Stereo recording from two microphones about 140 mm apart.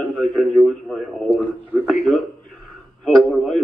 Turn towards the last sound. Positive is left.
turn(degrees=5)  # may be behind; listen again after turning